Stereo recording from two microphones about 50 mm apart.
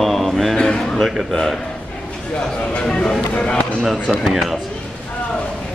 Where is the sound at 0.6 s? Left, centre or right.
Centre.